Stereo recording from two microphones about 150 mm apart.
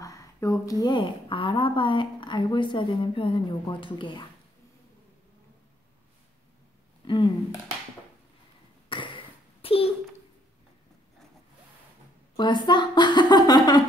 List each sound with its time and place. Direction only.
0.0 s a woman's voice: 20° left (ahead or behind)
7.1 s a woman's voice: 30° left (ahead or behind)
8.8 s cough: 35° left (ahead or behind)
12.4 s a woman's voice: 30° left (ahead or behind)